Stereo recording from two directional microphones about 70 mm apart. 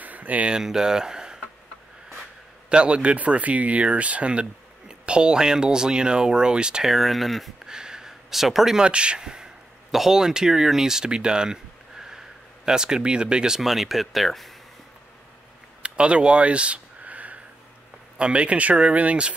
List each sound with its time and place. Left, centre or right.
0.0 s a sound: right
0.6 s speech: centre
2.7 s speech: centre
7.6 s speech: centre
15.8 s a sound: centre
18.1 s speech: centre